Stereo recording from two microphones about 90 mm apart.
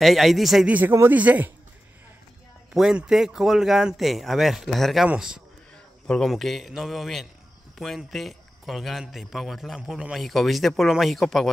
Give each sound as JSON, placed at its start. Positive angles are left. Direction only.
{"t": 0.0, "sound": "a man's voice", "side_deg": 0}
{"t": 0.7, "sound": "a man's voice", "side_deg": -20}
{"t": 2.7, "sound": "a man's voice", "side_deg": -5}
{"t": 6.0, "sound": "a man's voice", "side_deg": 5}